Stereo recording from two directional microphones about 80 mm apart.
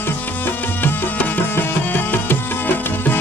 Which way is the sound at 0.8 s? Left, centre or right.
Left.